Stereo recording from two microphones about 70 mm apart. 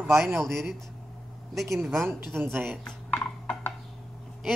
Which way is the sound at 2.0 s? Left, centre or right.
Right.